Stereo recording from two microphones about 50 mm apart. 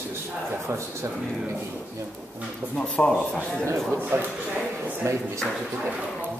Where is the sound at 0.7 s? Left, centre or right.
Right.